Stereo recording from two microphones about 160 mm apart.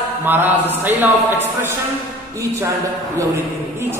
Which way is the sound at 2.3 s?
20° right (ahead or behind).